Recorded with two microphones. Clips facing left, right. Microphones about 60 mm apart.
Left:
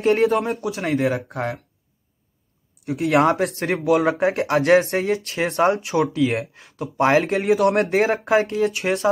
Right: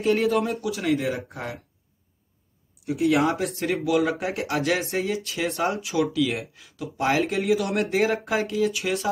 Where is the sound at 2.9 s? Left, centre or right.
Left.